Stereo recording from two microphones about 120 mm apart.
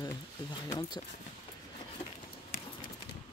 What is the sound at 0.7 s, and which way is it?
Speech, 35° left (ahead or behind).